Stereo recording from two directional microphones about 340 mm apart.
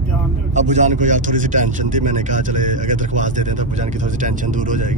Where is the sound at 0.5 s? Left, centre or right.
Right.